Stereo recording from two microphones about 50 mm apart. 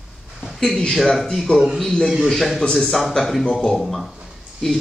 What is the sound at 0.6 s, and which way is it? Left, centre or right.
Speech, centre.